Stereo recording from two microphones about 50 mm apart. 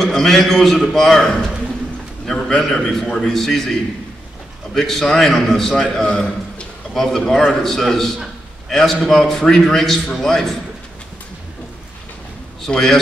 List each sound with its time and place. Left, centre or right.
0.0 s a man's voice: centre
2.2 s a sound: centre
2.6 s a man's voice: centre
4.7 s a man's voice: centre
6.9 s a man's voice: centre
12.6 s a man's voice: centre